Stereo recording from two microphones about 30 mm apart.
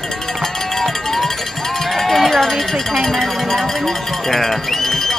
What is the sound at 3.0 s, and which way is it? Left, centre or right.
Music, centre.